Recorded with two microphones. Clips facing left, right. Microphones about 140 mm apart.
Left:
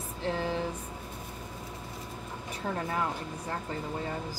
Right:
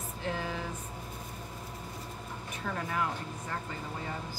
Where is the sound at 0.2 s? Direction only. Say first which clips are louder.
Left 4 dB; 30° left (ahead or behind).